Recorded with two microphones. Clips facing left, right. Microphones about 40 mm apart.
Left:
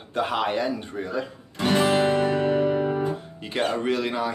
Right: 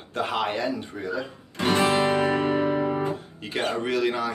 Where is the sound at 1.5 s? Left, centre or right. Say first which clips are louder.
Left 1 dB; centre.